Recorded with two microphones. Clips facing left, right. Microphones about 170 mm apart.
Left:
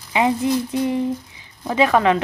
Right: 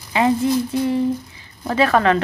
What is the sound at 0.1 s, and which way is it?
Speech, 15° left (ahead or behind).